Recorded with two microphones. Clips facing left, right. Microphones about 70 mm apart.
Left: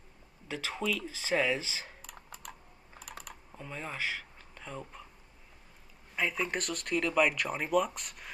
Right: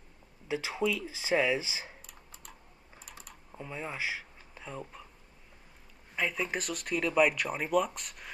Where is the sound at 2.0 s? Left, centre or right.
Left.